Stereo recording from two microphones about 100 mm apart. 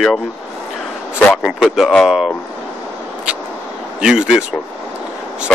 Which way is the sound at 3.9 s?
10° right (ahead or behind).